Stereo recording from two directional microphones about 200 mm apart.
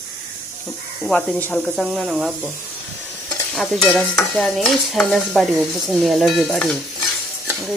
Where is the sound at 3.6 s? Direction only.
5° left (ahead or behind).